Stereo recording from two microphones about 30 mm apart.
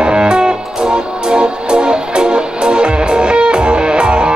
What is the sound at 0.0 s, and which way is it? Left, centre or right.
Music, right.